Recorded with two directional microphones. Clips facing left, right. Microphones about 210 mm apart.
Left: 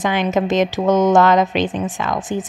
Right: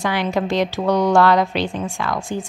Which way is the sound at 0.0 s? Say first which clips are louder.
Left 3 dB; 20° left (ahead or behind).